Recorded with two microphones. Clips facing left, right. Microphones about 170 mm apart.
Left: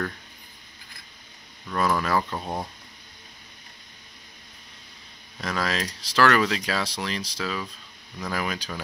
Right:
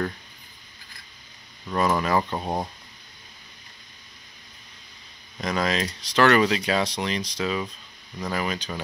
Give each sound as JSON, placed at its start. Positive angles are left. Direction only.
{"t": 1.7, "sound": "speech", "side_deg": -10}
{"t": 2.2, "sound": "speech", "side_deg": -20}
{"t": 5.6, "sound": "speech", "side_deg": 0}